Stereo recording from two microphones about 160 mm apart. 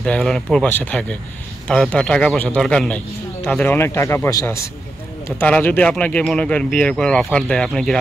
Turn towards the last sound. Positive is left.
turn(degrees=5)  # may be behind; listen again after turning